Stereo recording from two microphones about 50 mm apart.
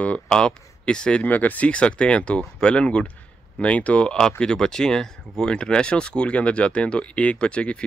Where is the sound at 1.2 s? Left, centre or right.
Left.